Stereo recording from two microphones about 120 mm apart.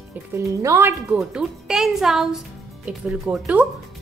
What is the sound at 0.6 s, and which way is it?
Speech, 25° right (ahead or behind).